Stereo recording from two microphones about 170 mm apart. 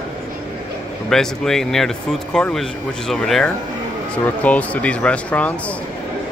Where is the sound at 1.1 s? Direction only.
5° left (ahead or behind).